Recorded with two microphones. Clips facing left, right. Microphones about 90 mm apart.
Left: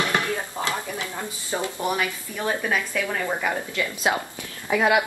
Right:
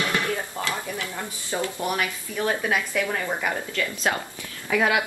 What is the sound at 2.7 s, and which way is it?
Speech, 10° right (ahead or behind).